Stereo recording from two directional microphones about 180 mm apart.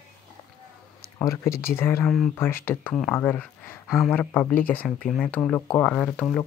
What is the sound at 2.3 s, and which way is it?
Speech, 10° left (ahead or behind).